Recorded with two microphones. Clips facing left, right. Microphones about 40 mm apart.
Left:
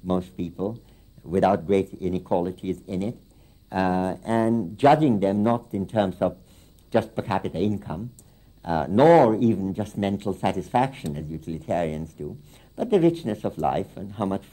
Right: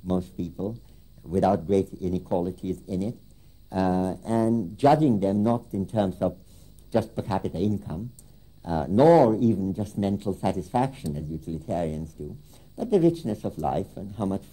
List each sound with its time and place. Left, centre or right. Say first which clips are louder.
0.0 s speech: left 2 dB; left